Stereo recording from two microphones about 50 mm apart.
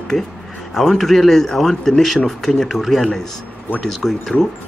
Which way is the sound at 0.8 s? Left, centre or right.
Centre.